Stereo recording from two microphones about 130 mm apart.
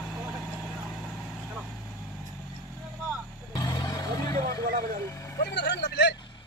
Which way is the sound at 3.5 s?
30° left (ahead or behind).